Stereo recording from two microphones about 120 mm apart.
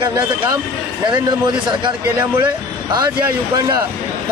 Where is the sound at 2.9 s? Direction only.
35° right (ahead or behind).